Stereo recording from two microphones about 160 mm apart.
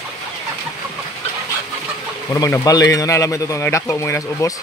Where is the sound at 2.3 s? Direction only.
20° left (ahead or behind).